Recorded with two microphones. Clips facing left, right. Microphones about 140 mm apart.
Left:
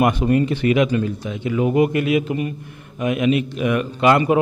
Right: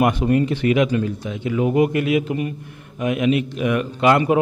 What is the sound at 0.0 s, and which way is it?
Speech, 10° left (ahead or behind).